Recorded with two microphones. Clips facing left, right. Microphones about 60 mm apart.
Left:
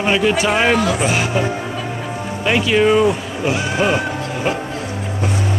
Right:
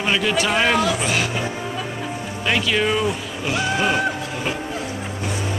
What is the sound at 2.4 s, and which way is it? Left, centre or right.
Speech, centre.